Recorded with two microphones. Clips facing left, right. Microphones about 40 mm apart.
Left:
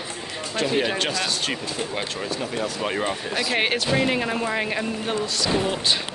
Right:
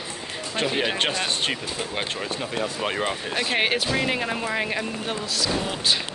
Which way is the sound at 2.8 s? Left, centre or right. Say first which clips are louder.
Left 1 dB; centre.